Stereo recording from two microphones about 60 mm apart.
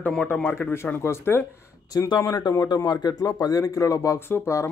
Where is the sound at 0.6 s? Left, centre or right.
Left.